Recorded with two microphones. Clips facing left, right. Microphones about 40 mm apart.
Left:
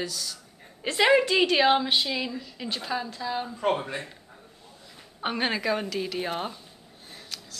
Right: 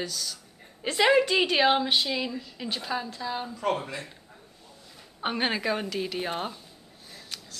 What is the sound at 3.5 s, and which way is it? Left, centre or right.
Speech, left.